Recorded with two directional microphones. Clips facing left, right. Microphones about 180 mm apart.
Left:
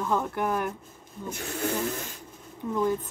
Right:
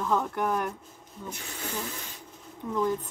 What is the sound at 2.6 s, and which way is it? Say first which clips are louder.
Speech: left 1 dB; 10° left (ahead or behind).